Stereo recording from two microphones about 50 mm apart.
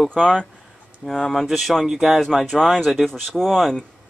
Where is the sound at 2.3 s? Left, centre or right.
Centre.